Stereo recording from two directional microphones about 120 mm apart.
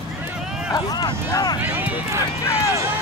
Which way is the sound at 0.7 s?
35° left (ahead or behind).